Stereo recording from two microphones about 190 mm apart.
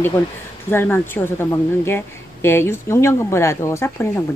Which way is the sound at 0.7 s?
10° left (ahead or behind).